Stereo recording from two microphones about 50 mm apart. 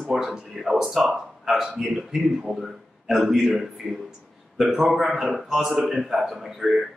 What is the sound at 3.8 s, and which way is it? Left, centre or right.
Speech, centre.